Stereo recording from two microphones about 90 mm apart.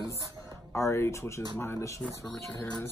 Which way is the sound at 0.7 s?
30° left (ahead or behind).